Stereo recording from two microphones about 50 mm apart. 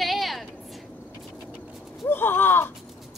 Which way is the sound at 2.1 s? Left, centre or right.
Left.